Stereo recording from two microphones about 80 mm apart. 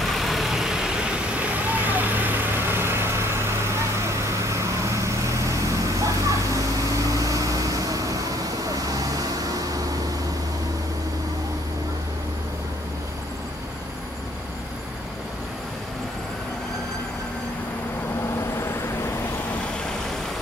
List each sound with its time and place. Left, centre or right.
0.0 s vehicle: centre; by 9.9 s right